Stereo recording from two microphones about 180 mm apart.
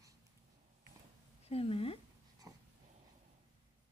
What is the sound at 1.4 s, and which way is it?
Speech, 35° left (ahead or behind).